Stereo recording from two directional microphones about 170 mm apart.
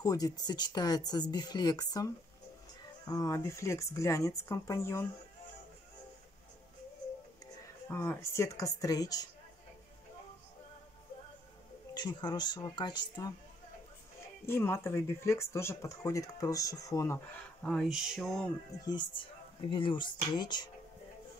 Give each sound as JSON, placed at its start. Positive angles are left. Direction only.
{"t": 0.0, "sound": "speech", "side_deg": 20}
{"t": 7.9, "sound": "speech", "side_deg": 15}
{"t": 11.9, "sound": "speech", "side_deg": 25}
{"t": 14.4, "sound": "speech", "side_deg": 15}
{"t": 17.6, "sound": "a sound", "side_deg": 0}
{"t": 18.9, "sound": "speech", "side_deg": 25}